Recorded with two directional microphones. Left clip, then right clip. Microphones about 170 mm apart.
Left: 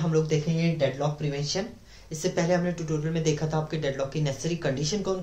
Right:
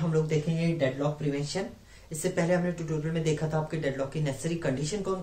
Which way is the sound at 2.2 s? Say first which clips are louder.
Left 2 dB; 20° left (ahead or behind).